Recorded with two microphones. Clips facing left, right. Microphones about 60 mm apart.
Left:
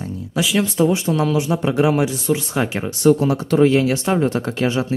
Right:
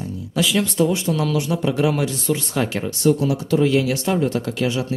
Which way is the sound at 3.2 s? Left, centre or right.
Left.